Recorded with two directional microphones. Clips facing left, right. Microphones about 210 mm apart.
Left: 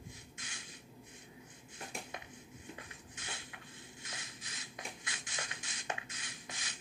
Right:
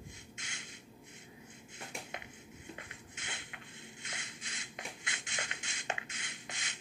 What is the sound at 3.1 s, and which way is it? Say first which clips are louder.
Shuffle: even; 20° right (ahead or behind).